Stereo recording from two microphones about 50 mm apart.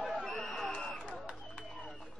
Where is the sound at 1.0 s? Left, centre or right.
Centre.